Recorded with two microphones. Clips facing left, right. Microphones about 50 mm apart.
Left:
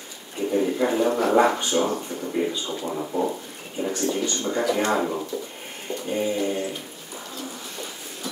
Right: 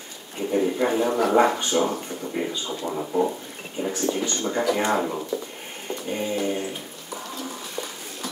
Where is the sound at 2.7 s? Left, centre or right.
Centre.